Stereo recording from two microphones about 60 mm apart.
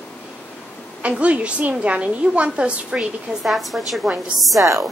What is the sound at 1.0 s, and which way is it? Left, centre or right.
A woman's voice, right.